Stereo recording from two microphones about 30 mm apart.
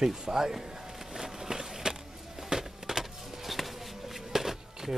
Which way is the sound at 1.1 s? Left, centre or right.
Centre.